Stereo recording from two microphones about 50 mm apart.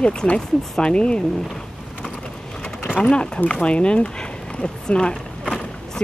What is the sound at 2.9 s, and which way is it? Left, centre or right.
Speech, left.